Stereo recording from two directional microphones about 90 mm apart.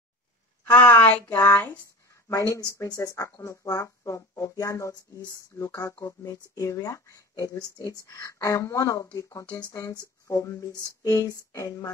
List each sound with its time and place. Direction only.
0.7 s speech: 15° left (ahead or behind); by 11.9 s 40° left (ahead or behind)